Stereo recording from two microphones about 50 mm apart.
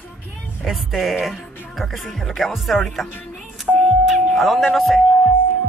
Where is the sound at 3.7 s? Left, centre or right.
Centre.